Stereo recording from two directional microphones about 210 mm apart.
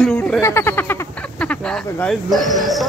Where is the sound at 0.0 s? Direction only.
10° left (ahead or behind).